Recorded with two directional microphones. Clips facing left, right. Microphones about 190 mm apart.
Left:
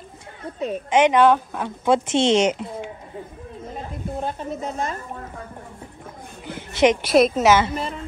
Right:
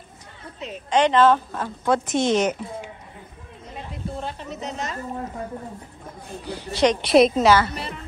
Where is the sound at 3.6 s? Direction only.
50° left (ahead or behind).